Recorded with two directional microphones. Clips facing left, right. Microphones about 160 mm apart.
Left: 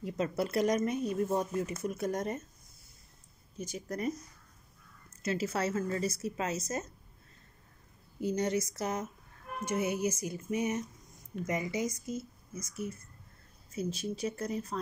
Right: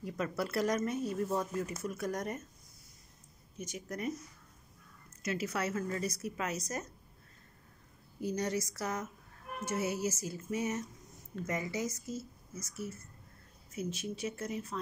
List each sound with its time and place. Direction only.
0.0 s speech: 20° left (ahead or behind)
3.5 s speech: 30° left (ahead or behind)
5.2 s speech: 30° left (ahead or behind)
8.2 s speech: 25° left (ahead or behind)
13.7 s speech: 30° left (ahead or behind)